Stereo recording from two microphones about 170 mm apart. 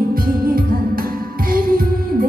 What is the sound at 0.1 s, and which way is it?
Music, 55° right (ahead or behind).